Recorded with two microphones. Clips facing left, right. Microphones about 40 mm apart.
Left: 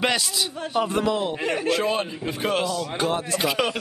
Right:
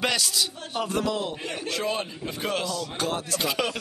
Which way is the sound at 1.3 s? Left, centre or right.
Left.